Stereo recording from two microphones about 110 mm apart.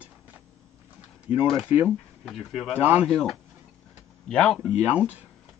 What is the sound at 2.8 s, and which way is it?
Speech, 15° right (ahead or behind).